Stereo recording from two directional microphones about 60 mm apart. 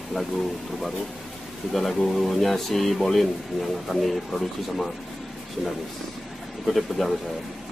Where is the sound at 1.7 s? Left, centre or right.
Centre.